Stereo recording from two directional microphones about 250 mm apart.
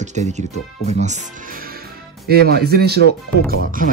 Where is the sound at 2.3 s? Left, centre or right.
Right.